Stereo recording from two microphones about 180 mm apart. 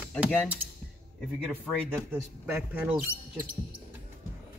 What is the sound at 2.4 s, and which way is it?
Speech, 10° right (ahead or behind).